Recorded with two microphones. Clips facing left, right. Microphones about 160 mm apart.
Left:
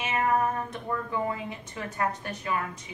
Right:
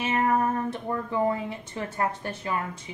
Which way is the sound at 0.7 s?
30° right (ahead or behind).